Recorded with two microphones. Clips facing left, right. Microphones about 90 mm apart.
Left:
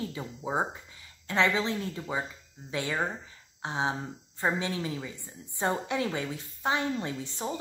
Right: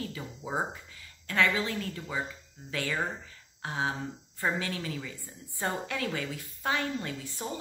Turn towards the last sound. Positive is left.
turn(degrees=25)  # may be behind; listen again after turning